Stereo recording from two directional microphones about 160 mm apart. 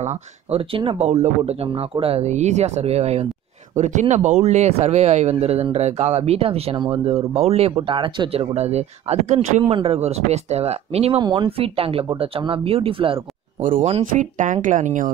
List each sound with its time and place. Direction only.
0.0 s speech: 40° right (ahead or behind)
13.6 s speech: 55° right (ahead or behind)